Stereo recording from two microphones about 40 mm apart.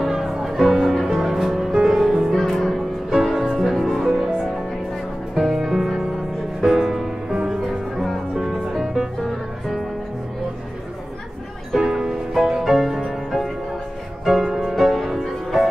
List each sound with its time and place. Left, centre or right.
0.0 s music: centre
9.2 s music: centre
11.8 s music: centre
14.2 s music: centre
14.7 s music: centre